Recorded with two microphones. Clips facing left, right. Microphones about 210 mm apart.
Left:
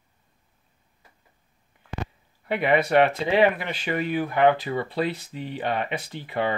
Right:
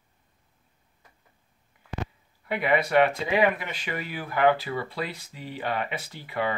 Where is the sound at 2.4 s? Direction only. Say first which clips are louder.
Left 3 dB; 25° left (ahead or behind).